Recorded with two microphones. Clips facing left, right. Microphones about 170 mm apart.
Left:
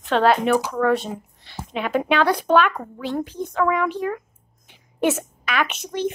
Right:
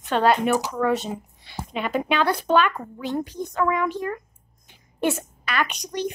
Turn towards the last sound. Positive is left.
turn(degrees=5)  # may be behind; listen again after turning